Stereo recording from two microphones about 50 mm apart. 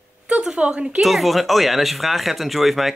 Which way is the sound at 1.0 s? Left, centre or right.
Centre.